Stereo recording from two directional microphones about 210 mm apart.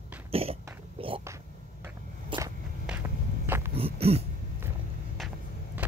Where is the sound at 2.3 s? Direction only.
25° right (ahead or behind).